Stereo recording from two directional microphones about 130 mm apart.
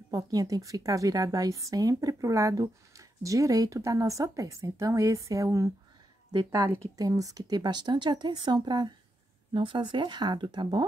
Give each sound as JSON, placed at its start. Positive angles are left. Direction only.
{"t": 0.1, "sound": "a woman's voice", "side_deg": -30}
{"t": 7.0, "sound": "speech", "side_deg": -25}